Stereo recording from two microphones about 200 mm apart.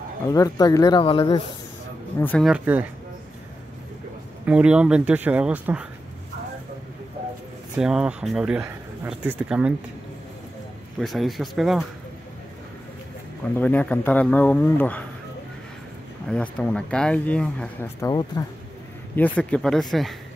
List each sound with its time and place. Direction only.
0.3 s speech: 20° left (ahead or behind)
2.1 s speech: 5° left (ahead or behind)
2.5 s speech: 5° right (ahead or behind)
4.5 s speech: 5° right (ahead or behind)
7.7 s speech: 5° right (ahead or behind)
11.0 s speech: centre (ahead or behind)
13.6 s speech: 10° left (ahead or behind)
16.3 s speech: 5° left (ahead or behind)